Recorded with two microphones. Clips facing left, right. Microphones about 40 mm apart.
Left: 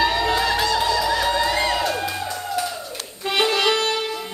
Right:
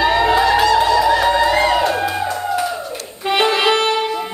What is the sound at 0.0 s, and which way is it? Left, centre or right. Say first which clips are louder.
Crowd: right 6 dB; centre.